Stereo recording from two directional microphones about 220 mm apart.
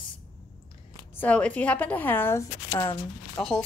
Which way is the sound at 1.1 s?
5° left (ahead or behind).